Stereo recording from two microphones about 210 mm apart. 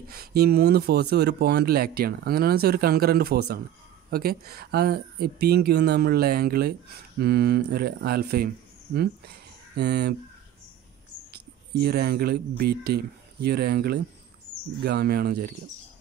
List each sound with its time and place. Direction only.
0.1 s speech: 50° right (ahead or behind)
11.3 s speech: 50° right (ahead or behind)